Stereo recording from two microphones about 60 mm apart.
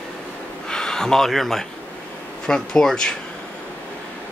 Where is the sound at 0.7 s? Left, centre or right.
Centre.